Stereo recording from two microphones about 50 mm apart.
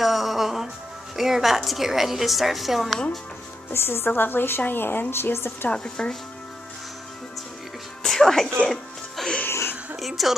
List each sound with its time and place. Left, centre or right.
0.0 s music: centre
1.1 s a woman's voice: centre
3.7 s a woman's voice: left
4.1 s a woman's voice: left
5.7 s speech: centre
8.0 s music: centre
9.5 s a sound: left
9.9 s speech: centre